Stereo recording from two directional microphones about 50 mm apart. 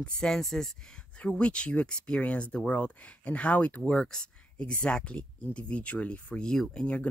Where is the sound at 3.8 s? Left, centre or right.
Centre.